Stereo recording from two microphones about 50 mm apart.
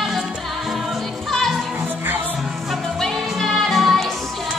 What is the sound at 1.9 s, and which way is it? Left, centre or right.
Music, right.